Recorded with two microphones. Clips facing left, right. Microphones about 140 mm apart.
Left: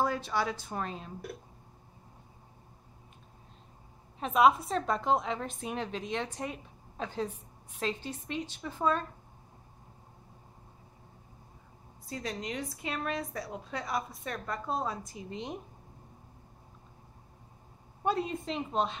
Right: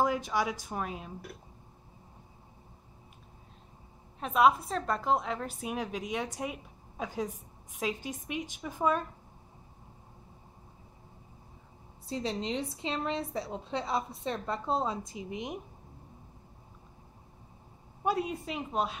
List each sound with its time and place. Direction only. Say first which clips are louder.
0.0 s a woman's voice: right 1 dB; 15° right (ahead or behind)
4.2 s a woman's voice: left 1 dB; centre (ahead or behind)
12.1 s a woman's voice: right 4 dB; 25° right (ahead or behind)
18.0 s a woman's voice: even; 10° right (ahead or behind)